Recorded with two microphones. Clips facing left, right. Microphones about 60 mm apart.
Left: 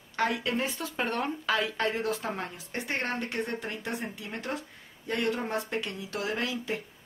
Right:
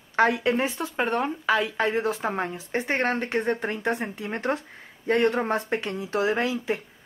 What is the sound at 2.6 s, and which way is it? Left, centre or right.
Speech, right.